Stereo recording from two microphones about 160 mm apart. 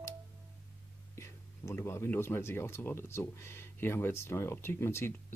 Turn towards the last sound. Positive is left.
turn(degrees=15)  # may be behind; listen again after turning